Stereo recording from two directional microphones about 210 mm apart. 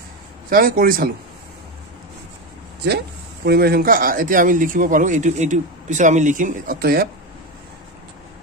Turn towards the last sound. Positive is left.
turn(degrees=-45)  # may be behind; listen again after turning